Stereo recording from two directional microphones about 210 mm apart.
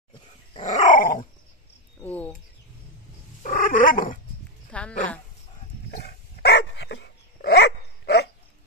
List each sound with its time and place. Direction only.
0.6 s dog: 35° left (ahead or behind)
2.0 s bird: 5° left (ahead or behind)
3.4 s dog: 40° left (ahead or behind)
4.6 s a sound: 5° left (ahead or behind)
5.9 s dog: 50° left (ahead or behind)